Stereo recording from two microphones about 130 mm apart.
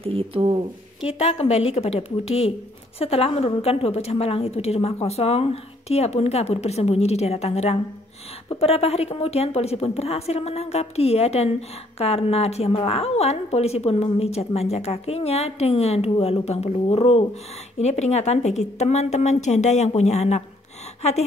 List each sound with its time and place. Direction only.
0.0 s speech: 45° right (ahead or behind)
1.0 s a woman's voice: 50° left (ahead or behind)